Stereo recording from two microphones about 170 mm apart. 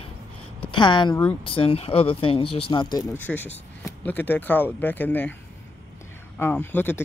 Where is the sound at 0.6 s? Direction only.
30° left (ahead or behind); by 5.3 s 10° left (ahead or behind).